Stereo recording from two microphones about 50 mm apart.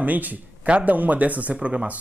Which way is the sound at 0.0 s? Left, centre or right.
Right.